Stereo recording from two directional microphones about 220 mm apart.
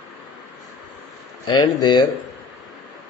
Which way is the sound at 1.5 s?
20° left (ahead or behind).